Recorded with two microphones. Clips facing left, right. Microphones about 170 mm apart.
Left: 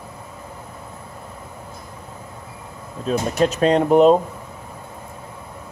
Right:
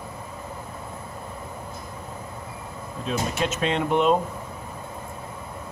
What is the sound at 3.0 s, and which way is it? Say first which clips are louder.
Speech: left 7 dB; 40° left (ahead or behind).